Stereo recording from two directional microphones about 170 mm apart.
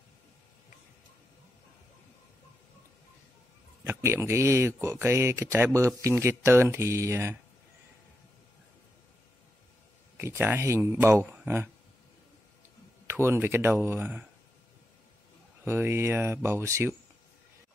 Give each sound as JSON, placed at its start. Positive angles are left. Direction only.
{"t": 3.8, "sound": "speech", "side_deg": -10}
{"t": 10.1, "sound": "speech", "side_deg": -15}
{"t": 13.0, "sound": "speech", "side_deg": -15}
{"t": 15.6, "sound": "speech", "side_deg": -15}